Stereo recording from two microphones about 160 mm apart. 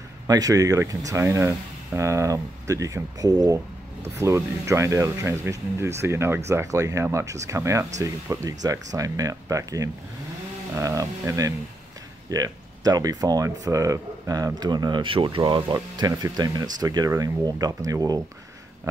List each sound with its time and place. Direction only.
0.3 s speech: 20° right (ahead or behind)